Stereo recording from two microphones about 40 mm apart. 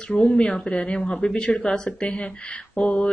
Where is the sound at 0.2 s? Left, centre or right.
Left.